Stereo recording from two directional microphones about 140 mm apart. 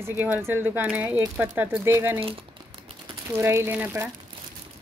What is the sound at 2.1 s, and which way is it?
Speech, 40° right (ahead or behind).